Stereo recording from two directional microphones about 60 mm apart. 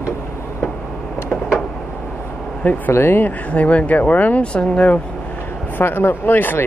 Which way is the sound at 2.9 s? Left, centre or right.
Left.